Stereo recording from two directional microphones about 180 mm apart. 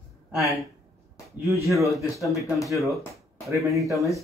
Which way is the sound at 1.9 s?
Centre (ahead or behind).